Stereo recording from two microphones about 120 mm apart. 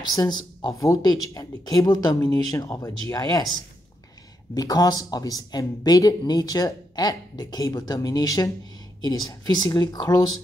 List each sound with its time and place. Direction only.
0.0 s speech: 35° left (ahead or behind)
4.6 s speech: 30° left (ahead or behind)